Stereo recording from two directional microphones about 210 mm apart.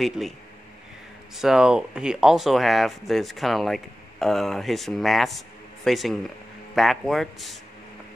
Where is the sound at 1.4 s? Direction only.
5° right (ahead or behind).